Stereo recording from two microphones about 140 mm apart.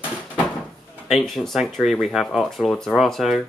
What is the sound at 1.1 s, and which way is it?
Speech, centre (ahead or behind).